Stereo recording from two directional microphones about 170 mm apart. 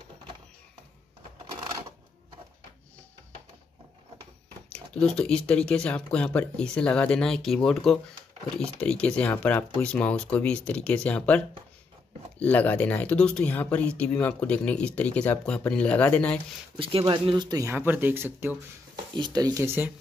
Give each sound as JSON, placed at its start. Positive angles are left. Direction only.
{"t": 4.7, "sound": "speech", "side_deg": 5}
{"t": 16.7, "sound": "speech", "side_deg": -30}
{"t": 19.1, "sound": "speech", "side_deg": -25}